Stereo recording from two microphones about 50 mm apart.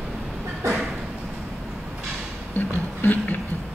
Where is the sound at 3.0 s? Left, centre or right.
Left.